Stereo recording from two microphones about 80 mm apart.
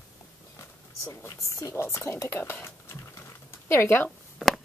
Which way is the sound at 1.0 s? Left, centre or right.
Left.